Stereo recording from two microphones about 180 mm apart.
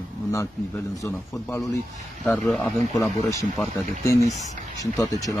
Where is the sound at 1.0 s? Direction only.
20° left (ahead or behind).